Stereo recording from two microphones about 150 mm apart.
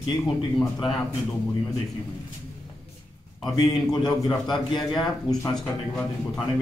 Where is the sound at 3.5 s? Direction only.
25° left (ahead or behind).